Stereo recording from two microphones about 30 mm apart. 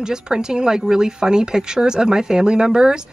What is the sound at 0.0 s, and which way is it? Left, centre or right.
Speech, right.